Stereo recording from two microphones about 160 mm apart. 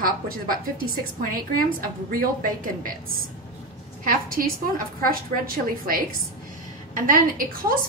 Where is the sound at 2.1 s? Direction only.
60° right (ahead or behind).